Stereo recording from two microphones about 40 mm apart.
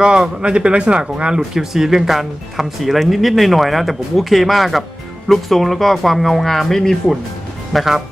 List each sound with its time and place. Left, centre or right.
0.0 s a man's voice: right
1.5 s speech: centre
7.7 s speech: centre